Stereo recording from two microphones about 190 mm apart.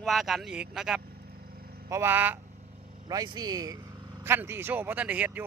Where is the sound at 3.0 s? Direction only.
20° right (ahead or behind).